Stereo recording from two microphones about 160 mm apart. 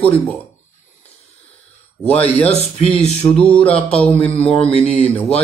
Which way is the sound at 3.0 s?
45° left (ahead or behind).